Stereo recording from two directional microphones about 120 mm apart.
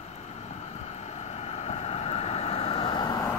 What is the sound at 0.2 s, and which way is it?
Vehicle, 65° left (ahead or behind).